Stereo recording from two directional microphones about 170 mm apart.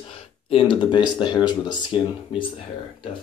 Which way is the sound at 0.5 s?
30° left (ahead or behind).